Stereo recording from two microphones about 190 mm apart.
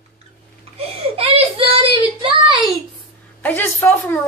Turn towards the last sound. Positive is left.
turn(degrees=10)  # may be behind; listen again after turning